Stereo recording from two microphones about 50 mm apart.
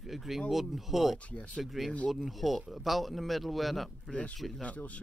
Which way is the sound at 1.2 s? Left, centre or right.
Left.